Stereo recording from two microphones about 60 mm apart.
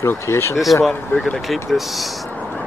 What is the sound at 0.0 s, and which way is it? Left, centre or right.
Speech, left.